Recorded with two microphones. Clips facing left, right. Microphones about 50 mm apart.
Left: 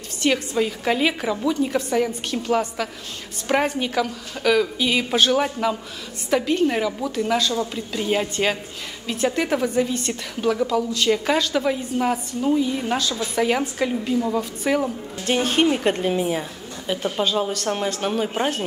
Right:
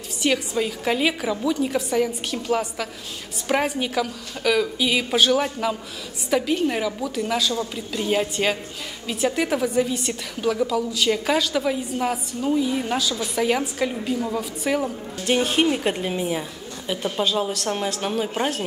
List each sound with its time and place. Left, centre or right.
0.2 s a woman's voice: centre
13.1 s a woman's voice: left
13.4 s a woman's voice: centre